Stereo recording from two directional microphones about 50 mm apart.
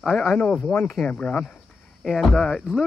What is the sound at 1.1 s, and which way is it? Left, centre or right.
Speech, left.